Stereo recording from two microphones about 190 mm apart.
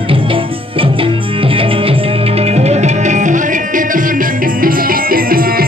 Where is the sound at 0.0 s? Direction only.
30° right (ahead or behind).